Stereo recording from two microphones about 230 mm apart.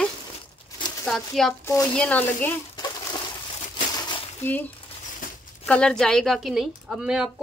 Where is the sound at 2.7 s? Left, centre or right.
Centre.